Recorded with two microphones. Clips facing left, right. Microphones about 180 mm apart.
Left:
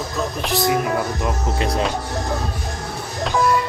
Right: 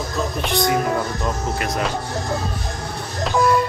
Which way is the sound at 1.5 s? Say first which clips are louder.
Left 2 dB; 30° left (ahead or behind).